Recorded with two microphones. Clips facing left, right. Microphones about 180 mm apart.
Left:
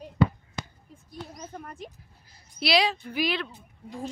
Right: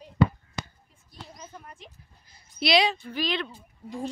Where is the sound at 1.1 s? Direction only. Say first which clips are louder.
Left 5 dB; 45° left (ahead or behind).